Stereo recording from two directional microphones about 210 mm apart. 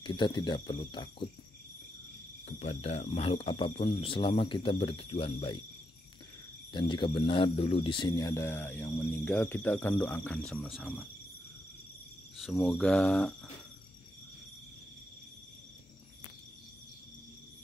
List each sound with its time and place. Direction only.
0.0 s speech: 20° left (ahead or behind)
2.4 s speech: 30° left (ahead or behind)
6.7 s speech: 20° left (ahead or behind); by 11.1 s centre (ahead or behind)
12.4 s speech: centre (ahead or behind)